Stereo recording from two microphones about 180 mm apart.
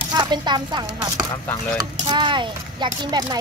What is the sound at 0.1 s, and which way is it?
A child's voice, 25° right (ahead or behind).